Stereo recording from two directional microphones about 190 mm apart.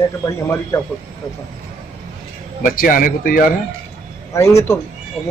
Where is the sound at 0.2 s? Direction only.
15° left (ahead or behind).